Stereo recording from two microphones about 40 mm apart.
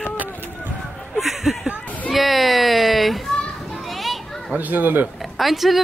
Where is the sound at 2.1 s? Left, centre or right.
Centre.